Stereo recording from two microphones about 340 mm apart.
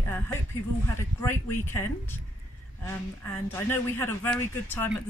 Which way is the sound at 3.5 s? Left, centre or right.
Centre.